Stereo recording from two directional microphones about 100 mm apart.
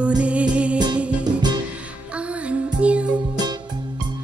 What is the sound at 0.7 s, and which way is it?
Music, 45° right (ahead or behind).